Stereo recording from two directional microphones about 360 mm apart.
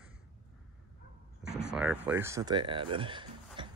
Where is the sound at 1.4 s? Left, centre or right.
Centre.